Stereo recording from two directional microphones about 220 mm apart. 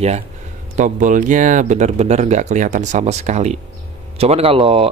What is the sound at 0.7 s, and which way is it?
Speech, 35° right (ahead or behind).